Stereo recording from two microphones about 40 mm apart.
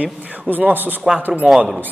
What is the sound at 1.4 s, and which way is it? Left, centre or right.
Speech, right.